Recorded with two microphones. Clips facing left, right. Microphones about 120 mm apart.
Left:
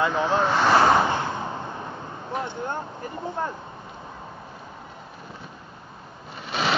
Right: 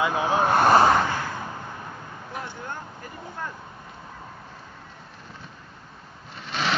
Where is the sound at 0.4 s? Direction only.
55° right (ahead or behind).